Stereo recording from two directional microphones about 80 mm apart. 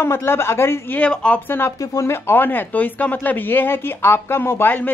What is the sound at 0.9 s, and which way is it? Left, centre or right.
Speech, centre.